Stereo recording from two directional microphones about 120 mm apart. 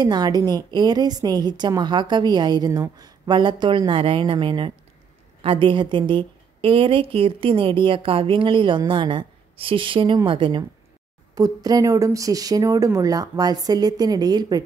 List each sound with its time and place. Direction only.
0.0 s a woman's voice: 35° right (ahead or behind)
11.3 s a woman's voice: 30° right (ahead or behind)